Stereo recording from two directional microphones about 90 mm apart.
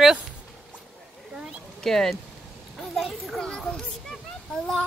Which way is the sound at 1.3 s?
5° right (ahead or behind).